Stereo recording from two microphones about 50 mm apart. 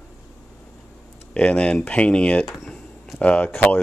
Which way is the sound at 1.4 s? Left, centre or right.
Left.